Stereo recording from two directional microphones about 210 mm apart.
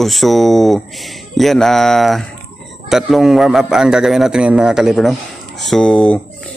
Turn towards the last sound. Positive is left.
turn(degrees=5)  # may be behind; listen again after turning